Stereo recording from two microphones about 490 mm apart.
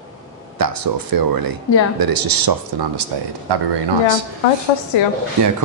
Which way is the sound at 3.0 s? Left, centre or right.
Right.